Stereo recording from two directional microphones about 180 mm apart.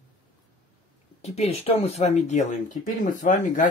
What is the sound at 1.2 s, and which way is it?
Speech, 35° left (ahead or behind).